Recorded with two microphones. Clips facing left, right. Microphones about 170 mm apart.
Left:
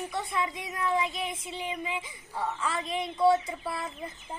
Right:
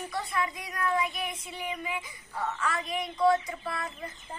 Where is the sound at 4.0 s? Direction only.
15° left (ahead or behind).